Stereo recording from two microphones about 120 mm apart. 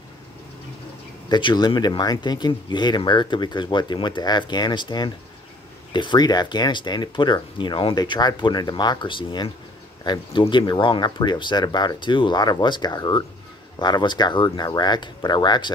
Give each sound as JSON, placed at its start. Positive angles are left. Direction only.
{"t": 1.3, "sound": "speech", "side_deg": 40}